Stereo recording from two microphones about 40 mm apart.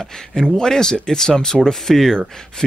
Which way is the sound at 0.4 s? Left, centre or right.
Centre.